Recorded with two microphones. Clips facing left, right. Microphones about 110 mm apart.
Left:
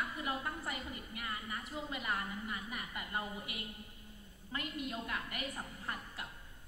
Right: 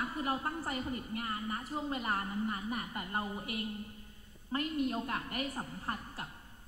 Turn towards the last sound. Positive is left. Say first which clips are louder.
# right 4 dB
turn(degrees=-35)  # may be behind; listen again after turning